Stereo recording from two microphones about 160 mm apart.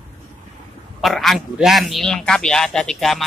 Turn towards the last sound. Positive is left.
turn(degrees=0)  # may be behind; listen again after turning